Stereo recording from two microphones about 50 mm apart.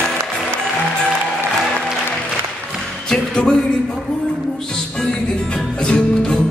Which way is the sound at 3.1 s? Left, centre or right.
Centre.